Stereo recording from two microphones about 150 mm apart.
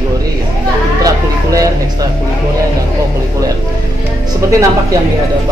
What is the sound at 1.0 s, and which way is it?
Vehicle, 25° right (ahead or behind).